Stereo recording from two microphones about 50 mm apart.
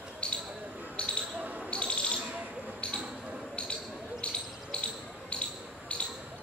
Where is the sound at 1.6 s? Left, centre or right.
Left.